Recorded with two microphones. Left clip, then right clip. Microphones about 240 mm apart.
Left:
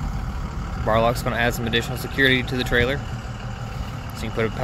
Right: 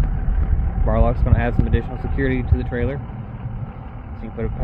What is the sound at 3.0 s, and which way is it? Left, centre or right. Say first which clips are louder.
Vehicle: left 2 dB; left.